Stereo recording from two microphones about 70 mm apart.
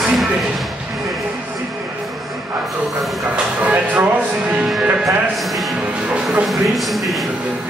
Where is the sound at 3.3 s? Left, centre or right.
Right.